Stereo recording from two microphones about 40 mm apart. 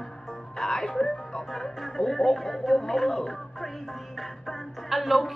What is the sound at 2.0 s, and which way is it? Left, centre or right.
A woman's voice, centre.